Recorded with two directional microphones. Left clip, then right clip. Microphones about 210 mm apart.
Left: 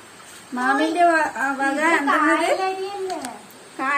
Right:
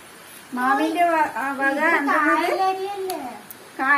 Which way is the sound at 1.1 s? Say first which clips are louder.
Left 1 dB; 55° left (ahead or behind).